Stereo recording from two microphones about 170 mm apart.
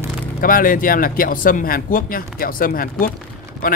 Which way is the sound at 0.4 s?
55° left (ahead or behind).